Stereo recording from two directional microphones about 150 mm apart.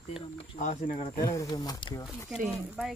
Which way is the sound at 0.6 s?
55° left (ahead or behind).